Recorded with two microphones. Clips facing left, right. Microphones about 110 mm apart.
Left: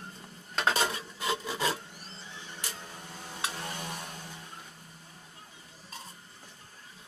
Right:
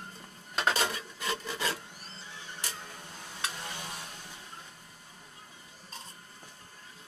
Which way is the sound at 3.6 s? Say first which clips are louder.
Left 3 dB; 40° left (ahead or behind).